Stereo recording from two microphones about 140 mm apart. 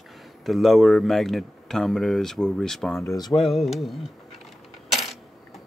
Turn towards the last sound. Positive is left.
turn(degrees=0)  # may be behind; listen again after turning